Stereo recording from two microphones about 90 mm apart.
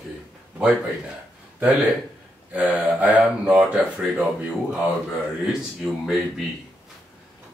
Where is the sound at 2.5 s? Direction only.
15° right (ahead or behind).